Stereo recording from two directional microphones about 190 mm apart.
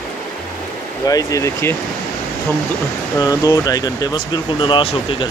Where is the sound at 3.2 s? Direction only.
20° left (ahead or behind).